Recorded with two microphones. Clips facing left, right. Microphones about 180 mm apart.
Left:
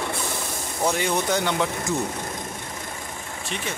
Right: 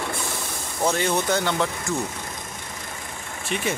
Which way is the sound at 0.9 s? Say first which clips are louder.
Right 1 dB; 10° left (ahead or behind).